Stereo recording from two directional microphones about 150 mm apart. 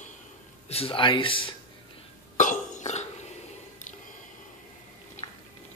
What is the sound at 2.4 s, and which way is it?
Burping, 55° left (ahead or behind).